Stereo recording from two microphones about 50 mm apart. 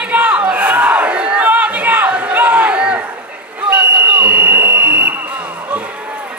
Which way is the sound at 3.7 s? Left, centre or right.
Right.